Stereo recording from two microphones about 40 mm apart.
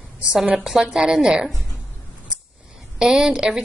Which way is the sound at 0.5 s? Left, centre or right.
Centre.